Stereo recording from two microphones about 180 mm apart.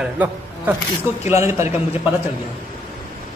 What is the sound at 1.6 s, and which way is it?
Speech, 35° left (ahead or behind).